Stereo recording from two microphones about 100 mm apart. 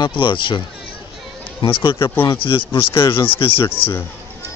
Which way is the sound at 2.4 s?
60° left (ahead or behind).